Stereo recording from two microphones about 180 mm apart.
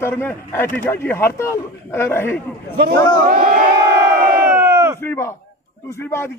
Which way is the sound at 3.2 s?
55° right (ahead or behind).